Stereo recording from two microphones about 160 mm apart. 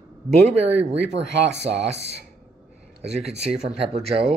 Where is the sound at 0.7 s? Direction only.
45° right (ahead or behind).